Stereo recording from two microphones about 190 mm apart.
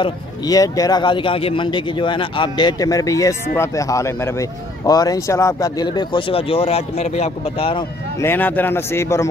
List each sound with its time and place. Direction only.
0.0 s a man's voice: 20° left (ahead or behind)
8.2 s a man's voice: 10° left (ahead or behind)